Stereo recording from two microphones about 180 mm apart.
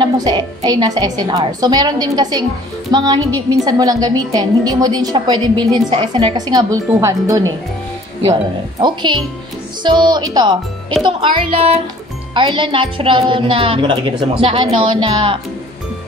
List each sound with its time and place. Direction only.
0.0 s a woman's voice: 20° right (ahead or behind)
8.8 s speech: 25° right (ahead or behind)